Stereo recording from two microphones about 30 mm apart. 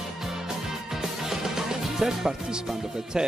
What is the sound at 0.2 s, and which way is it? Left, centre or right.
Music, centre.